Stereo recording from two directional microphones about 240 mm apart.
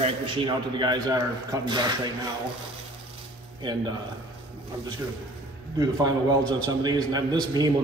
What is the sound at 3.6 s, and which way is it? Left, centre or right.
Speech, centre.